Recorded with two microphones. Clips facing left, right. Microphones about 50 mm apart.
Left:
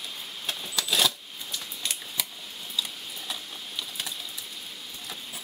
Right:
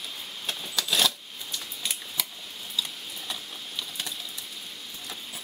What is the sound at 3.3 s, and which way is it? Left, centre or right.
Sewing machine, centre.